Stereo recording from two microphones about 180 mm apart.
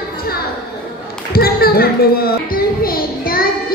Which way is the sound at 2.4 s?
55° left (ahead or behind).